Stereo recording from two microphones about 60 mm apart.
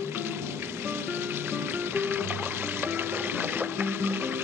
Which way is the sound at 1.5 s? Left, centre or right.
Right.